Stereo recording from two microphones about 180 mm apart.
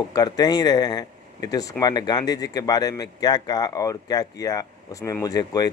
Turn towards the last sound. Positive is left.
turn(degrees=20)  # may be behind; listen again after turning